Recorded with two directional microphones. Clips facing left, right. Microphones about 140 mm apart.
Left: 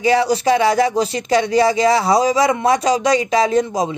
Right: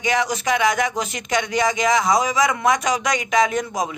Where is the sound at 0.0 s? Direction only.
30° left (ahead or behind).